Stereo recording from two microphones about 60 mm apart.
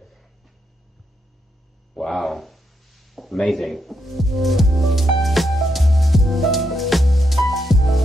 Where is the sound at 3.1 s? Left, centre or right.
Centre.